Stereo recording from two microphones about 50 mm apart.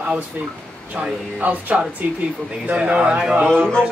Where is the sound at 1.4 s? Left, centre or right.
Right.